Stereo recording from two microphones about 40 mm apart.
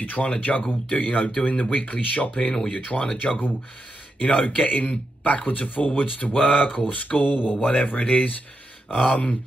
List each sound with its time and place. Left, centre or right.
0.0 s a man's voice: left
3.2 s a man's voice: left
4.2 s a man's voice: left